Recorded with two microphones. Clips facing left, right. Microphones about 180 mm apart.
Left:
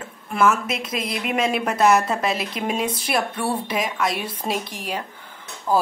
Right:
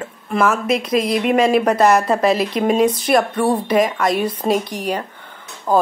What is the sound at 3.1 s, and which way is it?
Speech, 50° right (ahead or behind).